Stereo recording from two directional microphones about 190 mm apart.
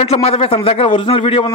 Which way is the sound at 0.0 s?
30° left (ahead or behind).